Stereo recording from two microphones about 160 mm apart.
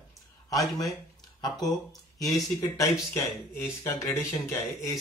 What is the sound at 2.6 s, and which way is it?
Speech, 20° left (ahead or behind).